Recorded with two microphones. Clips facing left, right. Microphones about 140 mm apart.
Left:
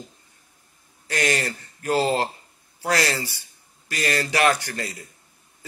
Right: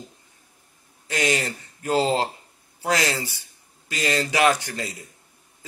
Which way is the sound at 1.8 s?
15° right (ahead or behind).